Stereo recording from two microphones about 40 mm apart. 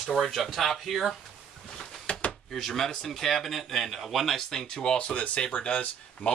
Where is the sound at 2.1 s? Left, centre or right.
Left.